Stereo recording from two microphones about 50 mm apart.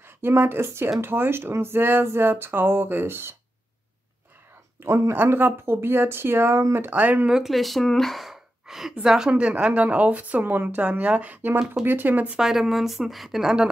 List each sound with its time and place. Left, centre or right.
0.4 s speech: right
4.8 s speech: right
5.1 s speech: right
7.0 s speech: right
7.4 s a woman's voice: centre
9.3 s speech: right
10.8 s speech: right
11.8 s speech: right
12.4 s a woman's voice: centre